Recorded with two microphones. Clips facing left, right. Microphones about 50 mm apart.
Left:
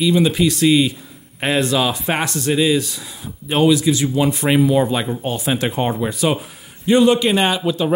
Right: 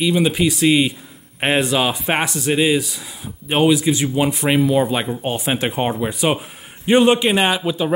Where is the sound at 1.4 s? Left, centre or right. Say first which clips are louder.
Right 1 dB; right.